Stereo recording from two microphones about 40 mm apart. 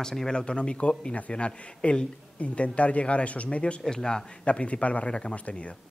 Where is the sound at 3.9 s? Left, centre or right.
Centre.